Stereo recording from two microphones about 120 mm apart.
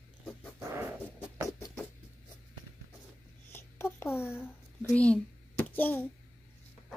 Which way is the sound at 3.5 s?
20° left (ahead or behind).